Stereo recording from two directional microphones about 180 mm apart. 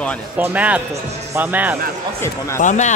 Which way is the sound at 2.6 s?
45° left (ahead or behind).